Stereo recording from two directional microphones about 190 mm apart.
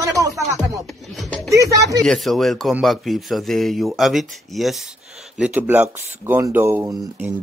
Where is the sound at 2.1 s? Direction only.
Centre (ahead or behind).